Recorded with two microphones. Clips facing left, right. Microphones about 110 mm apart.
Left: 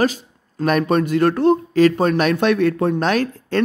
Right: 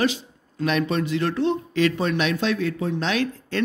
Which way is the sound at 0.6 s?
45° left (ahead or behind).